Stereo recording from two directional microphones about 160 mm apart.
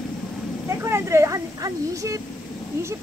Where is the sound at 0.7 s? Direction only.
15° right (ahead or behind).